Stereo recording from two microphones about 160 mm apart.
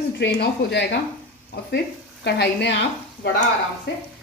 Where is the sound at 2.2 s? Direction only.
90° left.